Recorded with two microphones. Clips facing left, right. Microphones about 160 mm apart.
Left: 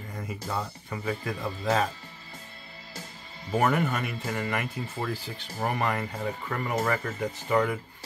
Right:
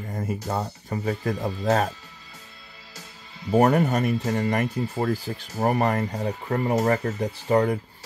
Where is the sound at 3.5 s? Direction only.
40° right (ahead or behind).